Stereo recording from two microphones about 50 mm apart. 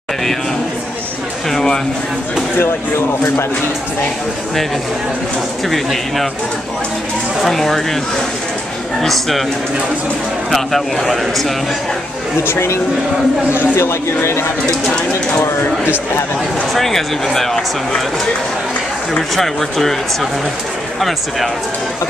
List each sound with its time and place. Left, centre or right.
1.5 s speech: centre
5.7 s speech: centre
7.3 s speech: centre
9.0 s speech: centre
10.5 s speech: centre
12.4 s speech: left
15.4 s a man's voice: left
16.7 s speech: centre
19.3 s speech: centre